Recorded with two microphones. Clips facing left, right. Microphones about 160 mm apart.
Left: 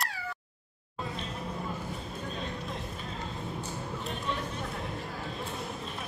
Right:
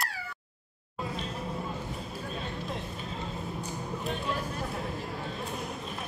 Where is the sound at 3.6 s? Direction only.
Centre (ahead or behind).